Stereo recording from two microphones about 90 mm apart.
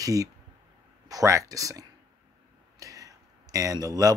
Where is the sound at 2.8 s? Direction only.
40° right (ahead or behind).